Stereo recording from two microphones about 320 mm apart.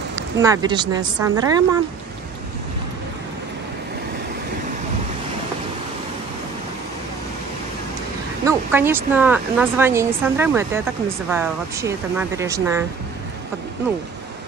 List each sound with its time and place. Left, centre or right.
0.1 s speech: centre
8.5 s speech: centre